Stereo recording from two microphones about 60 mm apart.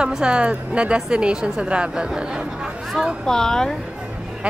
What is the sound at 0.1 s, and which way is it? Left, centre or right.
A woman's voice, centre.